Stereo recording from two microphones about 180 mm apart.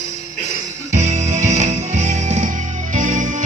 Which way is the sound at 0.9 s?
40° right (ahead or behind).